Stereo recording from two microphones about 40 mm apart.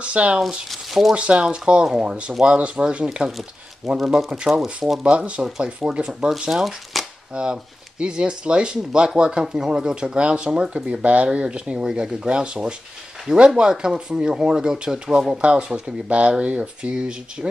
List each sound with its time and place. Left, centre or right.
0.0 s speech: right
0.7 s speech: centre
1.1 s speech: right
3.3 s speech: centre
5.0 s speech: right
6.5 s speech: centre
7.3 s speech: right
15.4 s speech: right